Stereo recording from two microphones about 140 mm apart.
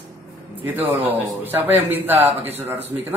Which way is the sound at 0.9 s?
15° right (ahead or behind).